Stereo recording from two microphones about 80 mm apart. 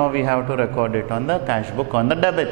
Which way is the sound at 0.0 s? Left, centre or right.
Centre.